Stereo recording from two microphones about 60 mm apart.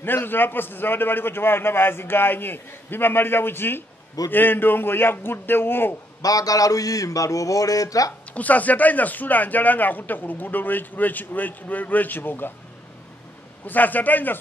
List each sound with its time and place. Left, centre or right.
0.0 s a man's voice: left
6.2 s a sound: left
8.3 s a man's voice: left
13.7 s a man's voice: left